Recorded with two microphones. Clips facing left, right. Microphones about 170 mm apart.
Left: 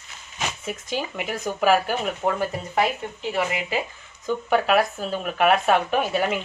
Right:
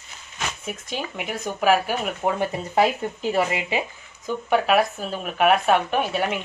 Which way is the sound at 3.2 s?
40° right (ahead or behind).